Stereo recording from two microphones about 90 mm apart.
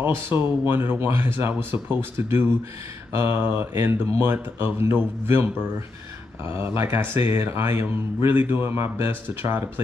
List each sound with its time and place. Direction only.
0.0 s speech: 25° right (ahead or behind)